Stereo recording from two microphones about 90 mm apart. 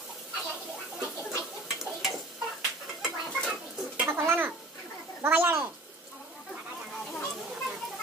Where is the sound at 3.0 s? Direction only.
5° right (ahead or behind).